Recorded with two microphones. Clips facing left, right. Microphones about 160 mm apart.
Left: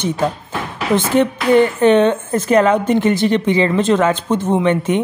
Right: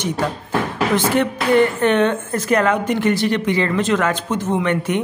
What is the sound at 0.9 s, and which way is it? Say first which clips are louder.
A woman's voice: left 5 dB; 20° left (ahead or behind).